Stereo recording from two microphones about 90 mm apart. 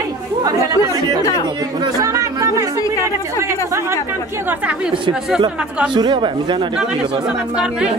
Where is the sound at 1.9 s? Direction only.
40° right (ahead or behind).